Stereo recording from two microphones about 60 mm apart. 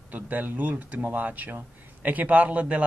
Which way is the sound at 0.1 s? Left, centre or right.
Right.